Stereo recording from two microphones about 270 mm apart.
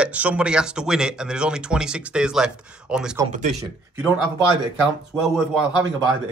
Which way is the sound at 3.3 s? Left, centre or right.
Right.